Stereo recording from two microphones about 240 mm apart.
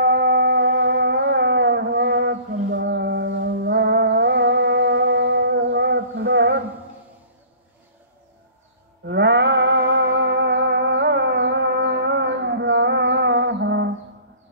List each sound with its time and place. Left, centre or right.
0.0 s shofar: right
9.0 s music: right